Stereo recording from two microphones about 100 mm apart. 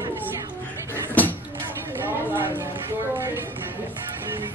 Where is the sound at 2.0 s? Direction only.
20° right (ahead or behind).